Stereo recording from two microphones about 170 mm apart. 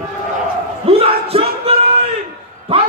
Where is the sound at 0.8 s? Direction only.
35° right (ahead or behind).